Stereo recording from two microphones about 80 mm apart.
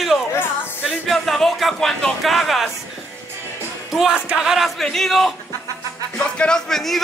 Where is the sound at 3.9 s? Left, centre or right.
Centre.